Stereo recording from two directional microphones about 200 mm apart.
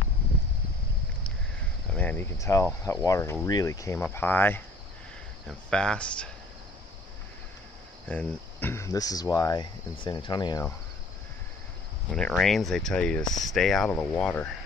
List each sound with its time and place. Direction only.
1.9 s speech: 5° left (ahead or behind)
8.1 s speech: 10° left (ahead or behind)
12.1 s speech: 5° left (ahead or behind)